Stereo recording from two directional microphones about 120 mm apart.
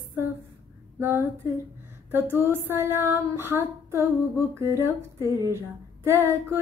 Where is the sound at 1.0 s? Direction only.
20° right (ahead or behind).